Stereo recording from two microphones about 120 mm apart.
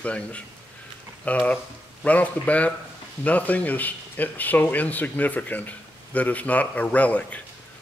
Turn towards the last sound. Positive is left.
turn(degrees=10)  # may be behind; listen again after turning